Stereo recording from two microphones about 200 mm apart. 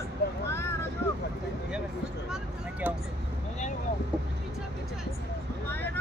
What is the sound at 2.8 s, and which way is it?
Speech, 10° right (ahead or behind).